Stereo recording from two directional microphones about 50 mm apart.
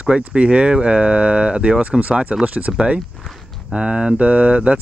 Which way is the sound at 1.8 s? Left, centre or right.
Right.